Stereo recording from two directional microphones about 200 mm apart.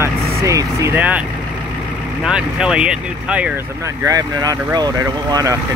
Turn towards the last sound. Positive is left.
turn(degrees=-15)  # may be behind; listen again after turning